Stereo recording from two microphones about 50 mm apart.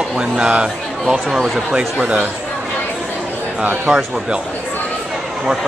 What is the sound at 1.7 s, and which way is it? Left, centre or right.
Speech, right.